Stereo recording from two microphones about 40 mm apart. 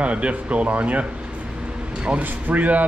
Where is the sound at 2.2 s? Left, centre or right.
Right.